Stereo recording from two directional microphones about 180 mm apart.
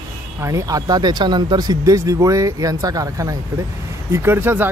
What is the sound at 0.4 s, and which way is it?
Speech, 15° right (ahead or behind).